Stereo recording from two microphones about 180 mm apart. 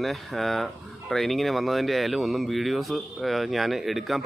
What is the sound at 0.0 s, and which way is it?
Speech, centre (ahead or behind).